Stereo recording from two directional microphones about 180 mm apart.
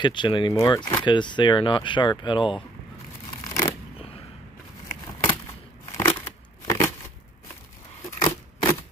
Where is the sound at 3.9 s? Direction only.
35° left (ahead or behind).